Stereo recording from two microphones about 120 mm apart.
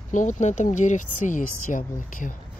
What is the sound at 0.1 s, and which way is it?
Speech, 90° left.